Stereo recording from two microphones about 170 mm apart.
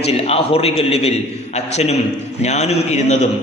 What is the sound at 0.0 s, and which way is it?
A man's voice, 35° left (ahead or behind).